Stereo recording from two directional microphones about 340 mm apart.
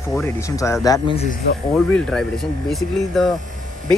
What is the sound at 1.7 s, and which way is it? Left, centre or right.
Speech, centre.